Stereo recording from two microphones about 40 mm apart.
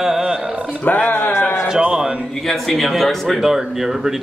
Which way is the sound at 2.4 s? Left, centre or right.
Centre.